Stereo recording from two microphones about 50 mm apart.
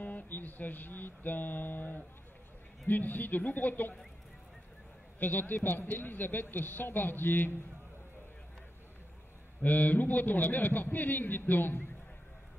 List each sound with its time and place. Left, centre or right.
0.0 s speech: left
5.2 s speech: left
9.6 s speech: left